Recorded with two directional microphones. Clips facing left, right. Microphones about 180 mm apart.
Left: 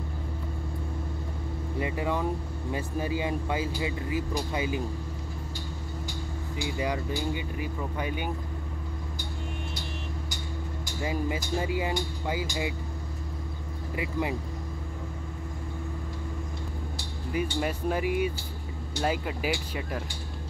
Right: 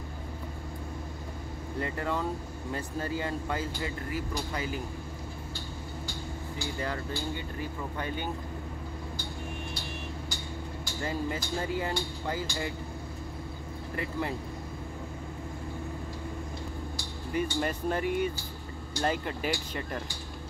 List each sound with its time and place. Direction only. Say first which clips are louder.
1.8 s speech: left 2 dB; 10° left (ahead or behind)
6.6 s speech: left 4 dB; 15° left (ahead or behind)
11.0 s speech: left 2 dB; 10° left (ahead or behind)
13.9 s speech: left 3 dB; 10° left (ahead or behind)
17.3 s speech: left 1 dB; 5° left (ahead or behind)